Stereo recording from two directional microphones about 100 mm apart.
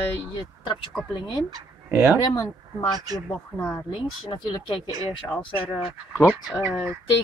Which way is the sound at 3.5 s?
25° left (ahead or behind).